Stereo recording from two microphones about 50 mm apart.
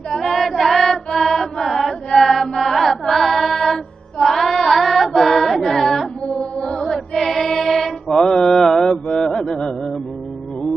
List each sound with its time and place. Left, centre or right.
0.1 s choir: centre
6.2 s music: centre
6.8 s mantra: centre
9.0 s a sound: centre